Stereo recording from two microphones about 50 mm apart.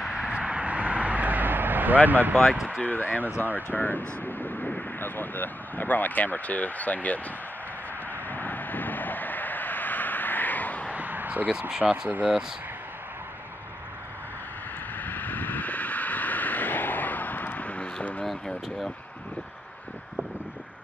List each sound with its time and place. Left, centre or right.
0.3 s vehicle: right
2.0 s speech: right
2.5 s speech: centre
2.8 s speech: left
8.3 s vehicle: left
10.9 s a sound: right
12.1 s speech: right
15.0 s vehicle: left
18.2 s speech: centre